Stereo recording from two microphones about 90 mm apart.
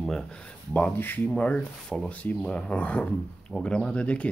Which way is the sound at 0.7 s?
20° left (ahead or behind).